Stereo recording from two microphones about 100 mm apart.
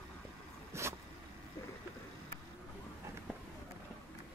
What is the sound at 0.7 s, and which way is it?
Vehicle, 25° right (ahead or behind).